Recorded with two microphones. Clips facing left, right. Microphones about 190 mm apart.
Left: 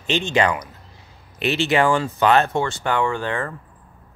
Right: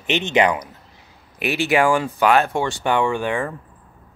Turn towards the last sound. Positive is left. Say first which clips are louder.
# right 2 dB
turn(degrees=-15)  # may be behind; listen again after turning